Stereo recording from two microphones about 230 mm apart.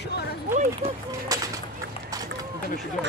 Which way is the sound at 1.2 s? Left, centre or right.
Centre.